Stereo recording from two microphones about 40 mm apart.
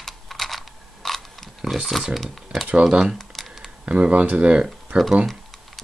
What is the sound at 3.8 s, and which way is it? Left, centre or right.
Speech, right.